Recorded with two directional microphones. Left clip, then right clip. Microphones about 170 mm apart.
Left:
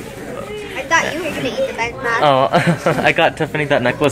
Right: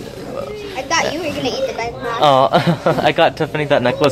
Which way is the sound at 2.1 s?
10° right (ahead or behind).